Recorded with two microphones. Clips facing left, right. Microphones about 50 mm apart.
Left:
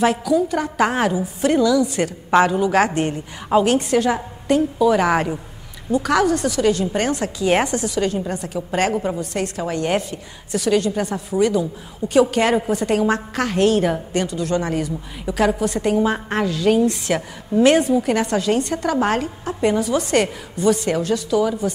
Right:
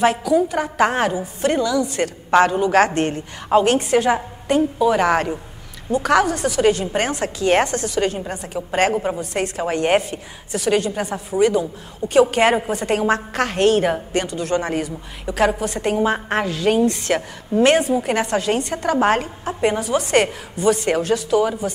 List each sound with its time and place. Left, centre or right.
0.0 s a woman's voice: centre
0.8 s a woman's voice: centre
5.0 s a man's voice: centre
6.0 s a woman's voice: centre
6.5 s a woman's voice: centre
8.0 s a woman's voice: centre; by 10.0 s right
10.1 s a woman's voice: centre
14.2 s a woman's voice: centre
17.9 s a woman's voice: centre